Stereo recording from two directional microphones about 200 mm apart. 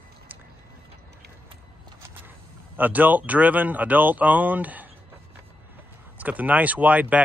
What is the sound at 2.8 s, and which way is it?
Speech, 10° right (ahead or behind).